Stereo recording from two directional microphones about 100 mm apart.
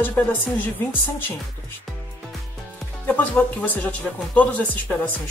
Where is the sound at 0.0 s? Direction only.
15° left (ahead or behind).